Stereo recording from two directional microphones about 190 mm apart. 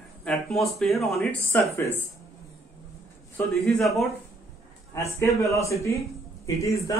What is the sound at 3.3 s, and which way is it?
Speech, centre (ahead or behind).